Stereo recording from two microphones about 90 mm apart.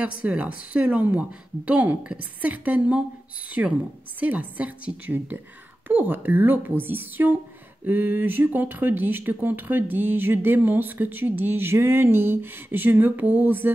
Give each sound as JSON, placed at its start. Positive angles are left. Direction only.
{"t": 0.0, "sound": "a woman's voice", "side_deg": -15}